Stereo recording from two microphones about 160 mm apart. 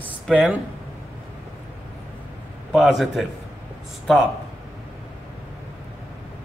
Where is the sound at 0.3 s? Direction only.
10° right (ahead or behind).